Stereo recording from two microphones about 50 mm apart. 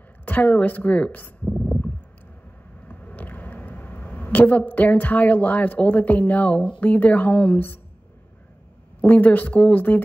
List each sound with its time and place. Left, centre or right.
0.2 s speech: left
1.5 s a sound: centre
2.9 s speech: left
9.0 s speech: left